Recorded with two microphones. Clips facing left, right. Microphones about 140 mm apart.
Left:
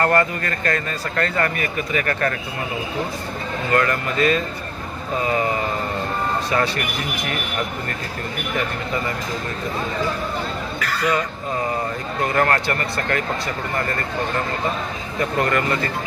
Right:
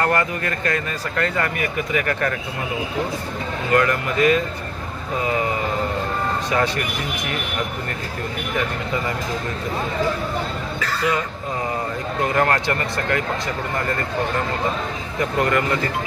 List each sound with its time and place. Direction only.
0.0 s speech: 15° right (ahead or behind)
3.7 s speech: 15° right (ahead or behind)
6.5 s speech: 15° right (ahead or behind)
10.8 s speech: 20° right (ahead or behind)
12.4 s speech: 15° right (ahead or behind)
15.4 s speech: 15° right (ahead or behind)